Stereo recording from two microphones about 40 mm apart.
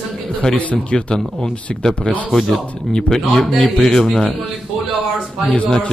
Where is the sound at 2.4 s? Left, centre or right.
Centre.